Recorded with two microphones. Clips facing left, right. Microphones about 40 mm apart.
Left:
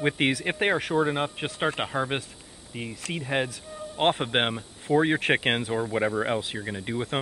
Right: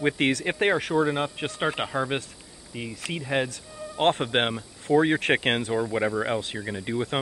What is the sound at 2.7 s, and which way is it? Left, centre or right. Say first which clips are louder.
Speech: right 1 dB; centre.